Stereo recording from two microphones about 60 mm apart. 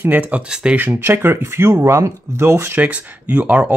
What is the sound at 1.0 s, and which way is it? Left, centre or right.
Speech, right.